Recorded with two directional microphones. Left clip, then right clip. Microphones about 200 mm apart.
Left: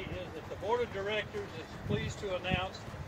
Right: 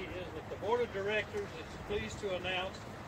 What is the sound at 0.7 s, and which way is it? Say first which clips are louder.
Speech: even; 5° left (ahead or behind).